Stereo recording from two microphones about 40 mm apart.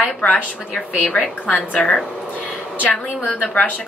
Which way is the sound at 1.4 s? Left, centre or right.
Left.